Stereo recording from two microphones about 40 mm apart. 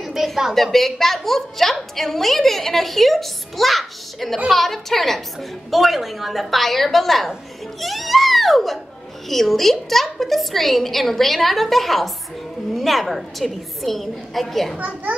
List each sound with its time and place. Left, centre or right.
0.0 s a sound: centre
0.6 s a woman's voice: centre
14.8 s a child's voice: right